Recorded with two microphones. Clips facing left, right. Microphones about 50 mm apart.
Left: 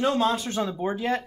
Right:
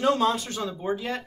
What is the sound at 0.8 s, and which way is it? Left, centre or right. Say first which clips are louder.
Speech: left 2 dB; left.